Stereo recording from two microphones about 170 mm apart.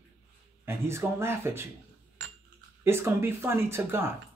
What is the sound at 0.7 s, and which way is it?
Speech, 15° right (ahead or behind).